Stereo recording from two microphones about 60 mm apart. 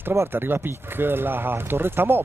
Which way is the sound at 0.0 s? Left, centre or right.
Right.